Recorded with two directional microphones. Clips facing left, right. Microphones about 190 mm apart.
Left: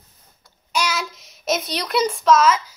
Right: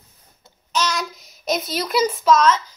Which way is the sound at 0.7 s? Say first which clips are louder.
Right 1 dB; 5° left (ahead or behind).